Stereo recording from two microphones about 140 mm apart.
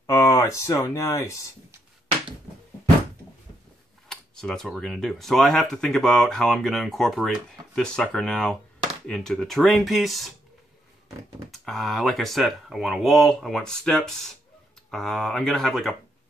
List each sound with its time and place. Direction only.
0.0 s speech: 20° left (ahead or behind)
4.1 s speech: 5° left (ahead or behind)
11.5 s speech: centre (ahead or behind)